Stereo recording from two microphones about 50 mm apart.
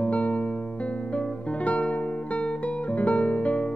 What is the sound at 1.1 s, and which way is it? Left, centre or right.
Guitar, left.